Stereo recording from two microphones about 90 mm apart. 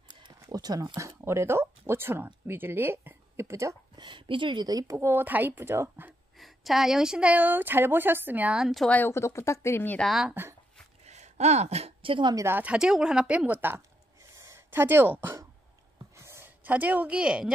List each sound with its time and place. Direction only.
0.1 s a sound: 50° right (ahead or behind)
0.9 s speech: 35° right (ahead or behind)
3.9 s a woman's voice: 60° right (ahead or behind)
4.6 s a woman's voice: 40° right (ahead or behind); by 6.1 s 25° right (ahead or behind)
6.3 s a woman's voice: centre (ahead or behind)
8.9 s speech: 20° left (ahead or behind)
9.2 s speech: 30° left (ahead or behind)
10.0 s speech: 5° right (ahead or behind)
12.0 s a woman's voice: 70° right (ahead or behind)
12.7 s a woman's voice: 5° right (ahead or behind); by 13.8 s 25° right (ahead or behind)
14.3 s a sound: 35° right (ahead or behind); by 17.5 s 10° right (ahead or behind)